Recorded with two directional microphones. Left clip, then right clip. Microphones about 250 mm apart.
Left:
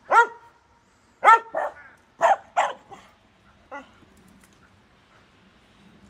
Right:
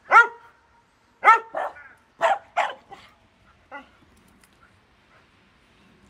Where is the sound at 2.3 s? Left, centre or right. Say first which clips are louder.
Left 2 dB; centre.